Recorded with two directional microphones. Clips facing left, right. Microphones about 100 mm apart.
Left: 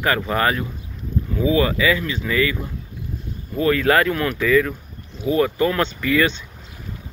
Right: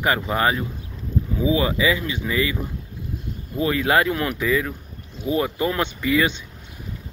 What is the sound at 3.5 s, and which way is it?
Speech, 20° right (ahead or behind).